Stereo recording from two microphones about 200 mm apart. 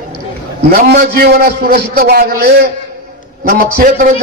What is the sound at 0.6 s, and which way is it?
A man's voice, 50° right (ahead or behind).